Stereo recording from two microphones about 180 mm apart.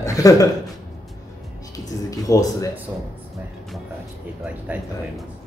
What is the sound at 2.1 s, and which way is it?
Speech, 20° left (ahead or behind).